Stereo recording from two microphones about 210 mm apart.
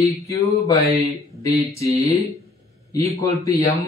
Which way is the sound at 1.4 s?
15° left (ahead or behind).